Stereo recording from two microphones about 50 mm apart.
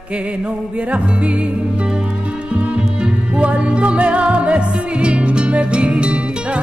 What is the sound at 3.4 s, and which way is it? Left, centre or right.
Music, right.